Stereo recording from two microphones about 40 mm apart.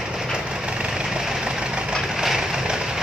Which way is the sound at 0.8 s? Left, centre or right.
Right.